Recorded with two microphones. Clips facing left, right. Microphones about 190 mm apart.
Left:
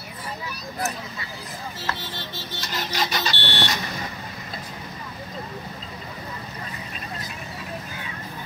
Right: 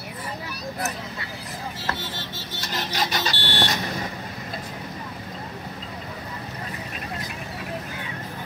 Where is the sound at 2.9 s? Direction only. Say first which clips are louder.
Even; 45° right (ahead or behind).